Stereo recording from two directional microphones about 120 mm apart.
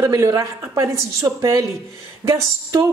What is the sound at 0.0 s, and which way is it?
A woman's voice, 30° right (ahead or behind).